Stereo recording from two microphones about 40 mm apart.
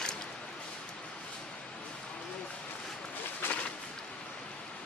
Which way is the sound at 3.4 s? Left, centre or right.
Left.